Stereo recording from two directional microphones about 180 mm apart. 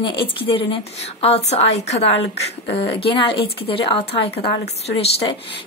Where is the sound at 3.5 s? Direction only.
30° left (ahead or behind).